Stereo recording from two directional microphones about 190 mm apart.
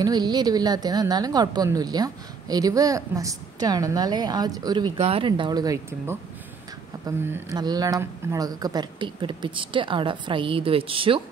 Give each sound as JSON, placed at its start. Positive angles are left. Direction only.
{"t": 0.0, "sound": "a woman's voice", "side_deg": -20}